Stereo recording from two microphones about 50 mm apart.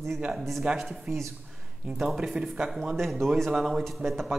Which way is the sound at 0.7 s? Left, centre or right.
Right.